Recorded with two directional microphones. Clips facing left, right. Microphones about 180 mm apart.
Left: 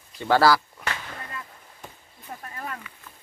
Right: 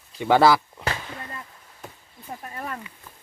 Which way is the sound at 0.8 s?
35° right (ahead or behind).